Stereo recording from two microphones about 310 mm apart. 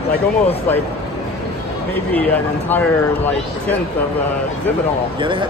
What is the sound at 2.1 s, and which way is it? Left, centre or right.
Speech, centre.